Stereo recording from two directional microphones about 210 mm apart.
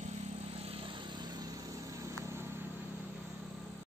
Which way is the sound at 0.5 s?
25° right (ahead or behind).